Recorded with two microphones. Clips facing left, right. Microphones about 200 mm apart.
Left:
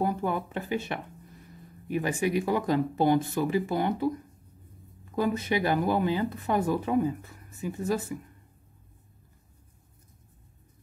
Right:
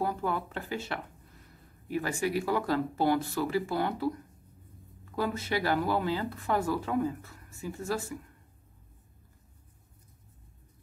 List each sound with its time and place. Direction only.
0.0 s speech: 20° left (ahead or behind)
5.1 s speech: 20° left (ahead or behind)